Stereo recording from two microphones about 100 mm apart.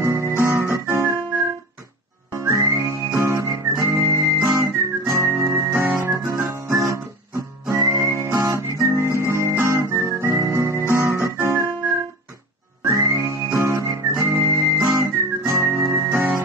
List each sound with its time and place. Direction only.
0.0 s guitar: 25° right (ahead or behind)
2.3 s whistling: 30° right (ahead or behind)
3.2 s guitar: 30° right (ahead or behind)
5.8 s music: 25° right (ahead or behind)
6.9 s guitar: 30° right (ahead or behind)
12.9 s music: 30° right (ahead or behind)